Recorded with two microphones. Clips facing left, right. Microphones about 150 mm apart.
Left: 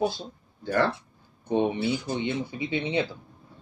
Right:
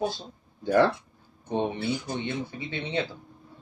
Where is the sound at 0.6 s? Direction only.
15° right (ahead or behind).